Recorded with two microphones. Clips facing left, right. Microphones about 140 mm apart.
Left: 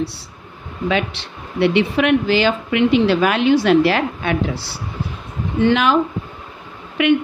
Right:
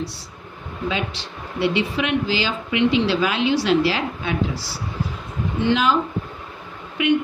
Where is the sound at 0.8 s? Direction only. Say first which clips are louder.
Left 5 dB; 65° left (ahead or behind).